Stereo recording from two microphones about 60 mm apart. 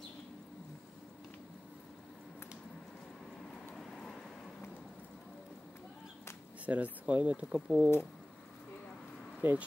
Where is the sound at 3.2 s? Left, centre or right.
Centre.